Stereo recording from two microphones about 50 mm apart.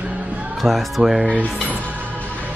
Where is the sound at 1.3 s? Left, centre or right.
Right.